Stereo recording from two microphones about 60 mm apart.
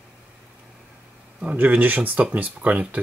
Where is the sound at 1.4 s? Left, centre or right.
Right.